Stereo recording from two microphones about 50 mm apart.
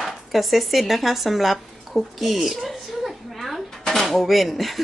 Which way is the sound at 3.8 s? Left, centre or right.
Centre.